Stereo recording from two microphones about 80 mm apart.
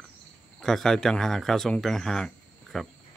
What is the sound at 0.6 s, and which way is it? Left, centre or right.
Speech, centre.